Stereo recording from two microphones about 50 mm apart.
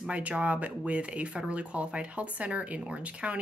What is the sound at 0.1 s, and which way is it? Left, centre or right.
Speech, right.